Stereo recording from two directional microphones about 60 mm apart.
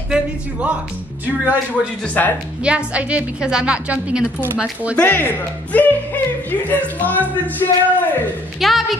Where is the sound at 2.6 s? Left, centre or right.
Centre.